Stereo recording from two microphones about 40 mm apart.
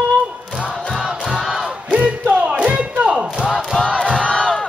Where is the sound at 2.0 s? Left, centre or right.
Right.